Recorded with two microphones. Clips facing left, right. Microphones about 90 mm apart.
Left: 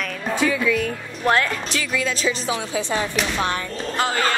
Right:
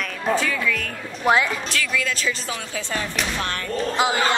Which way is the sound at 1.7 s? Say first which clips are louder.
Left 1 dB; 20° left (ahead or behind).